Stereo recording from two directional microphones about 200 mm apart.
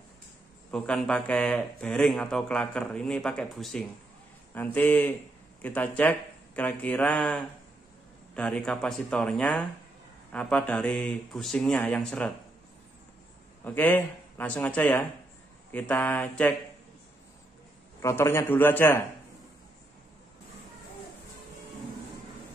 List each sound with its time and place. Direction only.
0.7 s a man's voice: 5° left (ahead or behind)
13.7 s a man's voice: 10° left (ahead or behind)
18.0 s a man's voice: 10° left (ahead or behind)